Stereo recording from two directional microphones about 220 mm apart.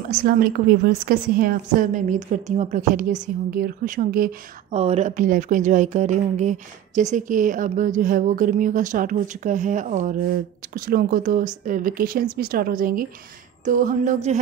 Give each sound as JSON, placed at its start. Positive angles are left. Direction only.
{"t": 0.1, "sound": "a woman's voice", "side_deg": -40}
{"t": 4.6, "sound": "a woman's voice", "side_deg": -30}